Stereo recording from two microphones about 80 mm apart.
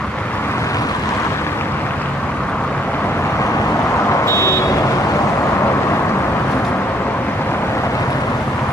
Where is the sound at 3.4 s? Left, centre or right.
Left.